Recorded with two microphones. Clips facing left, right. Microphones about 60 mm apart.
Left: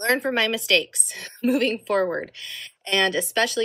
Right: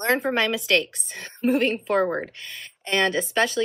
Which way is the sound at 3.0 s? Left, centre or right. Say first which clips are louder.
Even; centre.